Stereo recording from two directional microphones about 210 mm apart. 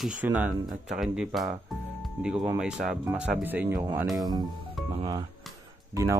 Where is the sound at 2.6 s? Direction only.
5° right (ahead or behind).